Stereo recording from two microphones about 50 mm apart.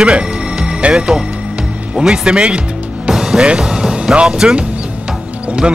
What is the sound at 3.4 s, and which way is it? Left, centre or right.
Speech, centre.